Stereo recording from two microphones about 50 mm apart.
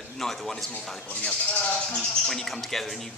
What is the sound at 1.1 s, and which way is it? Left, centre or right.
Speech, left.